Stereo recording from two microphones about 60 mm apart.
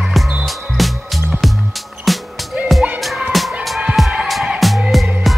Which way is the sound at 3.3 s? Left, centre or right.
Centre.